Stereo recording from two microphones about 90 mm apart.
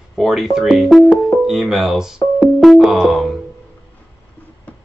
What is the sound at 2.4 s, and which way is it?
Music, centre (ahead or behind).